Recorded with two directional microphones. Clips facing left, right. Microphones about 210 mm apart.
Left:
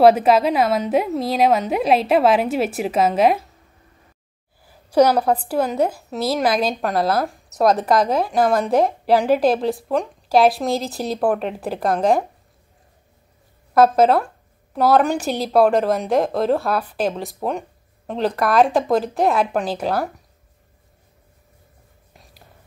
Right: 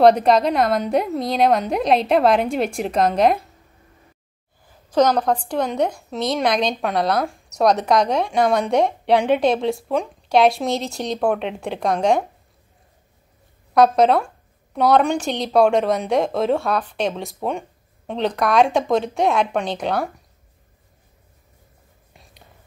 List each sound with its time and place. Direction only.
0.0 s a woman's voice: 5° left (ahead or behind)
4.9 s a woman's voice: 10° left (ahead or behind)
13.7 s a woman's voice: 5° left (ahead or behind)